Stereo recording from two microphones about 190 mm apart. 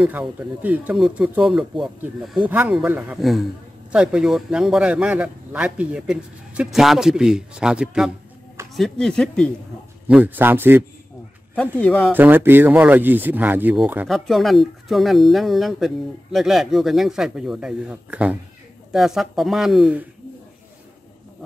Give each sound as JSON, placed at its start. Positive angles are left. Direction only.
{"t": 0.0, "sound": "speech", "side_deg": -5}
{"t": 10.0, "sound": "speech", "side_deg": -10}
{"t": 11.8, "sound": "speech", "side_deg": 5}
{"t": 12.1, "sound": "speech", "side_deg": -10}